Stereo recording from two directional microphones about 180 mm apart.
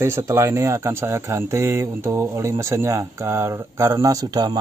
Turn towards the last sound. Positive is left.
turn(degrees=-25)  # may be behind; listen again after turning